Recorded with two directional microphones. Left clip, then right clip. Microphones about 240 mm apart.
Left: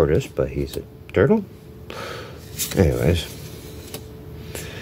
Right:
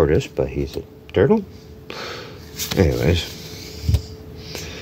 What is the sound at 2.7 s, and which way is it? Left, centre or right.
Speech, centre.